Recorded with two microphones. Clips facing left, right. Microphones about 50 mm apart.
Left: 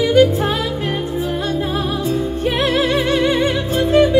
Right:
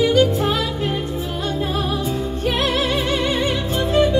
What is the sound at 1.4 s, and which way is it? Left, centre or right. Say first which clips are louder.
Music: left 2 dB; left.